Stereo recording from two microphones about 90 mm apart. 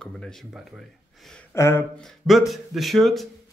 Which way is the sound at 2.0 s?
Centre (ahead or behind).